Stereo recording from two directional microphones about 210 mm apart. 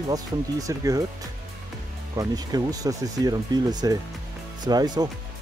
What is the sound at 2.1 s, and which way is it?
Speech, 20° right (ahead or behind).